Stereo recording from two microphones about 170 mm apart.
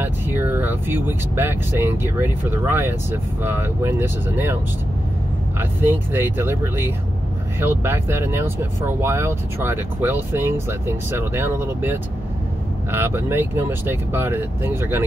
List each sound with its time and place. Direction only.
0.0 s speech: 10° right (ahead or behind)
5.6 s speech: 10° right (ahead or behind)